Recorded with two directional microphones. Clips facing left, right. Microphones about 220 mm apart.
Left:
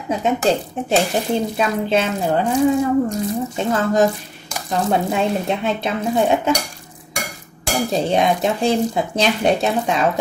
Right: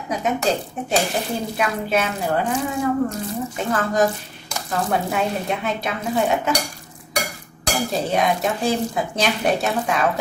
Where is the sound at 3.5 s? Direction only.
25° left (ahead or behind).